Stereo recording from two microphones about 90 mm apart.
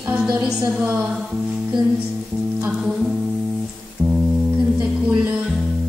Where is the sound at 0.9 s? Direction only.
15° right (ahead or behind).